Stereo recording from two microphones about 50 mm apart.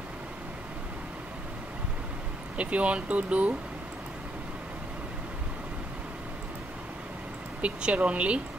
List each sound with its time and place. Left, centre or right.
2.5 s speech: right
7.6 s speech: right